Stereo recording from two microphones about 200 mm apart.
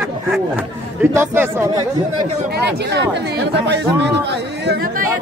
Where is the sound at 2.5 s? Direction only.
60° right (ahead or behind).